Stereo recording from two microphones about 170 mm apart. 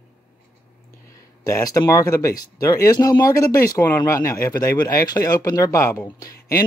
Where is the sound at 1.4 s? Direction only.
20° left (ahead or behind).